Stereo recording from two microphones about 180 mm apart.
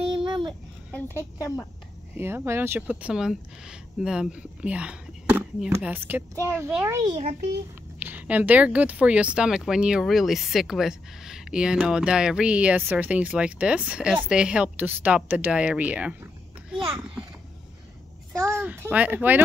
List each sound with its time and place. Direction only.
0.2 s a sound: 25° right (ahead or behind)
0.5 s speech: 10° left (ahead or behind)
2.1 s speech: 15° right (ahead or behind)
18.3 s speech: 15° right (ahead or behind)